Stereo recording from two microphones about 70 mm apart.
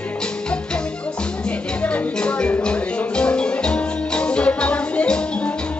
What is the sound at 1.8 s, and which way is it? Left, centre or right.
Music, centre.